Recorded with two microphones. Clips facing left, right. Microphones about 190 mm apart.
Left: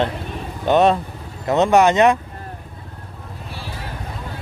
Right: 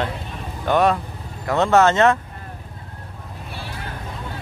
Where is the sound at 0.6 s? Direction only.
25° left (ahead or behind).